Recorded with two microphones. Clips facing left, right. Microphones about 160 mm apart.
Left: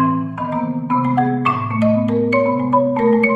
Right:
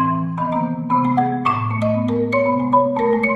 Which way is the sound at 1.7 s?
5° left (ahead or behind).